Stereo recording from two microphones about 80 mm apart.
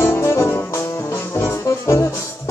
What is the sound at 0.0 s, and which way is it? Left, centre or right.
Music, left.